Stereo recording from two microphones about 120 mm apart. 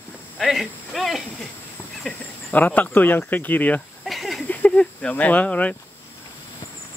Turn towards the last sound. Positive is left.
turn(degrees=10)  # may be behind; listen again after turning